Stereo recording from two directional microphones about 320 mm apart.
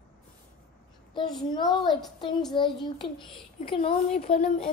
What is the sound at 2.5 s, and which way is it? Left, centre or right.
Child singing, centre.